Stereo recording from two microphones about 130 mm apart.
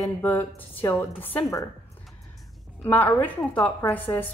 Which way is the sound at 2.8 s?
15° left (ahead or behind).